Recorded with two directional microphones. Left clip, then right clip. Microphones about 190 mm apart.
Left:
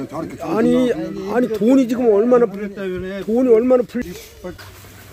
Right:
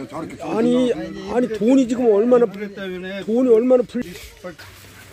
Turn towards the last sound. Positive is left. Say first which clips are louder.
# left 2 dB
turn(degrees=-20)  # may be behind; listen again after turning